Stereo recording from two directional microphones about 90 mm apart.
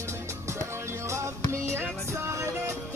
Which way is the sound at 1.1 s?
30° right (ahead or behind).